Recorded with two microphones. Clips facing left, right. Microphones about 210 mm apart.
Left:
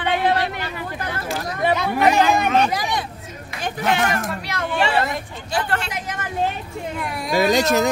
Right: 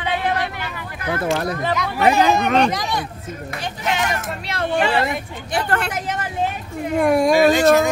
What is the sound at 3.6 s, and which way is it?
Speech, 50° left (ahead or behind).